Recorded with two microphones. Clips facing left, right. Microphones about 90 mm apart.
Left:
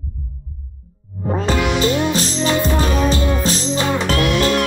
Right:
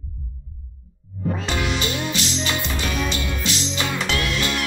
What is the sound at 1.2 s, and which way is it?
Music, 40° left (ahead or behind).